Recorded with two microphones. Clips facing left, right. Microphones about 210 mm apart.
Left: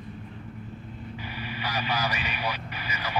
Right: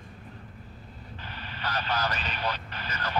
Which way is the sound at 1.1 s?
10° left (ahead or behind).